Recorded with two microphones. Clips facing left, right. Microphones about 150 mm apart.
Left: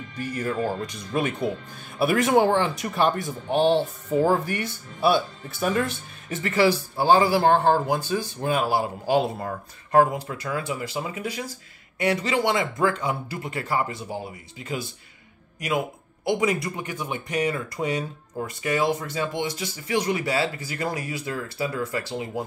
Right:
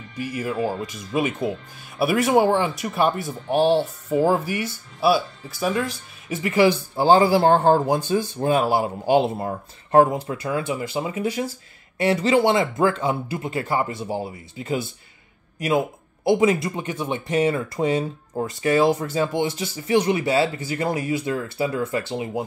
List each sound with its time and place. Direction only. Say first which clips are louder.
0.2 s speech: right 2 dB; 10° right (ahead or behind); by 14.9 s 25° right (ahead or behind)
16.3 s speech: right 5 dB; 25° right (ahead or behind)